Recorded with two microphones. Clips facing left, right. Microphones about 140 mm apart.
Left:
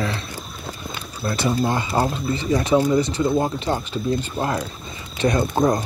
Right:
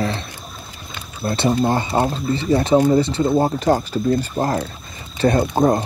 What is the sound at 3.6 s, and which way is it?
Speech, 45° right (ahead or behind).